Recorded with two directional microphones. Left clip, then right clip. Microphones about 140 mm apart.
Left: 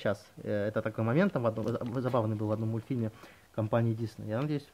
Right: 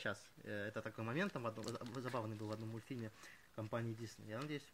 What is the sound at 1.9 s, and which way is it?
Speech, 5° right (ahead or behind).